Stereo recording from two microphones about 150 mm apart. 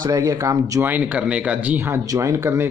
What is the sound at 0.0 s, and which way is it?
Speech, 20° right (ahead or behind).